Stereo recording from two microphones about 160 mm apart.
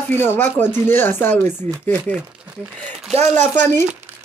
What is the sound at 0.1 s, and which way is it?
Speech, 15° left (ahead or behind).